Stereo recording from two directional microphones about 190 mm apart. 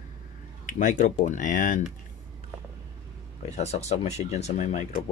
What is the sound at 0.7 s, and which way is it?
Speech, 40° left (ahead or behind).